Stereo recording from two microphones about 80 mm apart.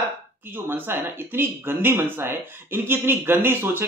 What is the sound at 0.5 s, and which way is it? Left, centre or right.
Speech, right.